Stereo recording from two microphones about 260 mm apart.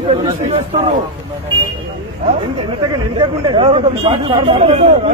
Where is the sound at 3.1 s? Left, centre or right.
Centre.